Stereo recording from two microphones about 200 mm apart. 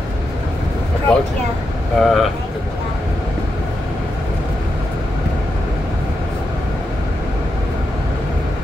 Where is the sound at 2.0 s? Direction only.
Centre (ahead or behind).